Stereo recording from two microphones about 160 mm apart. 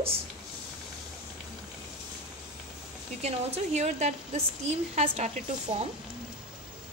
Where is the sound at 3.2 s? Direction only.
40° right (ahead or behind).